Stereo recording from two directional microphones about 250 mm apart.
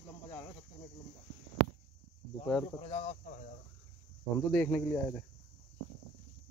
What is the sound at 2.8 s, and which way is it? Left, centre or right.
Speech, left.